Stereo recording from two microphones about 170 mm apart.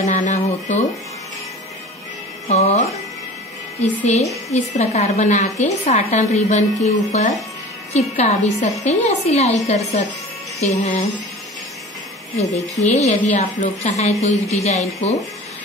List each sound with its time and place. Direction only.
0.0 s music: 45° left (ahead or behind)
2.4 s music: 45° left (ahead or behind)
4.0 s a woman's voice: 40° left (ahead or behind)
10.8 s a woman's voice: 40° left (ahead or behind)
12.4 s a woman's voice: 40° left (ahead or behind)